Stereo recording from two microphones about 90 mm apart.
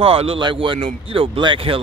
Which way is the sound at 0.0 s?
90° right.